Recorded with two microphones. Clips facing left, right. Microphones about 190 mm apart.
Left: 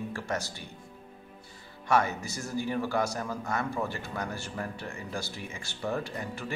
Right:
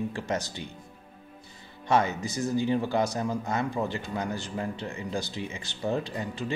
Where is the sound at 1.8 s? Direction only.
20° right (ahead or behind).